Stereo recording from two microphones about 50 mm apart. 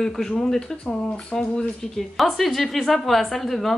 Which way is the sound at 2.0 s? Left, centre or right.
Centre.